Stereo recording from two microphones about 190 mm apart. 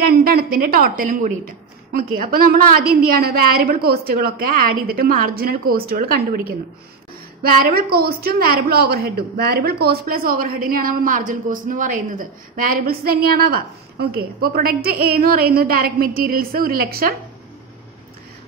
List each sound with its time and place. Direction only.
0.0 s a woman's voice: 55° right (ahead or behind)